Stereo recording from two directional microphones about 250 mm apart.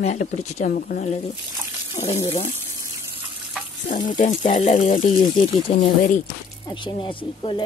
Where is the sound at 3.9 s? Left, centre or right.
Left.